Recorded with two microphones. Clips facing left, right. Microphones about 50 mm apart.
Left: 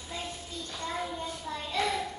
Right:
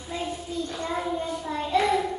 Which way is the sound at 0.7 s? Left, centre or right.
Centre.